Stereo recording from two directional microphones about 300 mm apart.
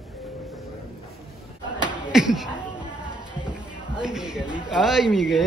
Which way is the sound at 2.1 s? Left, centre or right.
Centre.